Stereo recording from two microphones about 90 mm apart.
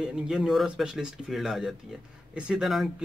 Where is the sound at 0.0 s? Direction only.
5° right (ahead or behind).